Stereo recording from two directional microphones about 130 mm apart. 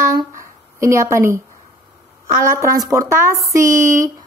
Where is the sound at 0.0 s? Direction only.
25° right (ahead or behind).